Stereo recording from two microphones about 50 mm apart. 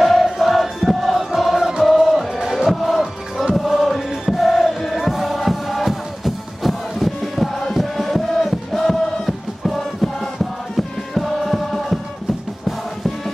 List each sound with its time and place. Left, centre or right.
0.0 s music: centre